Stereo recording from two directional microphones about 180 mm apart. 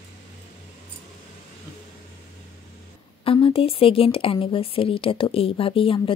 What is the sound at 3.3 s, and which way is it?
Speech, 30° left (ahead or behind).